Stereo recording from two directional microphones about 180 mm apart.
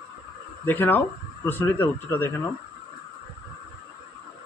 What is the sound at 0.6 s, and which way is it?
Speech, 10° left (ahead or behind).